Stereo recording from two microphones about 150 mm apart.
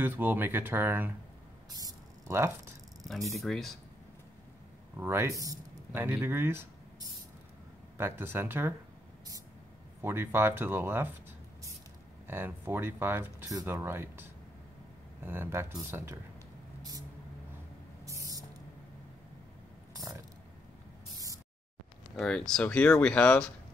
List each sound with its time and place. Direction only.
0.0 s speech: 15° right (ahead or behind)
1.7 s a sound: 25° right (ahead or behind)
3.3 s speech: centre (ahead or behind)
4.9 s speech: 15° right (ahead or behind)
10.0 s speech: 15° right (ahead or behind)
12.3 s speech: 15° right (ahead or behind)
19.9 s a sound: 25° right (ahead or behind)
22.2 s speech: 5° left (ahead or behind)